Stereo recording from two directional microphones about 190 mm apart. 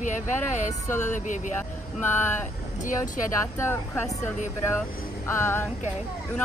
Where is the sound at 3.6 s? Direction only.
10° left (ahead or behind).